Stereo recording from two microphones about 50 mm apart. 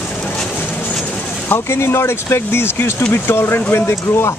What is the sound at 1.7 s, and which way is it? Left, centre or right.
Speech, left.